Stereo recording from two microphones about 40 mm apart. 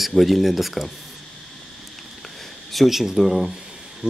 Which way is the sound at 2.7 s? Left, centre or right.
Centre.